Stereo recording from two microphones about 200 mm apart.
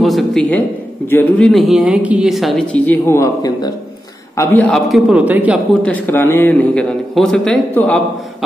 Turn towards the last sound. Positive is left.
turn(degrees=5)  # may be behind; listen again after turning